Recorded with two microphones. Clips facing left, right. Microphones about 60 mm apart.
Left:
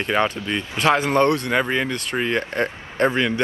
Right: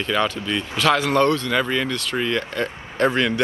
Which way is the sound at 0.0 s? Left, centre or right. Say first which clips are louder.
Left 1 dB; left.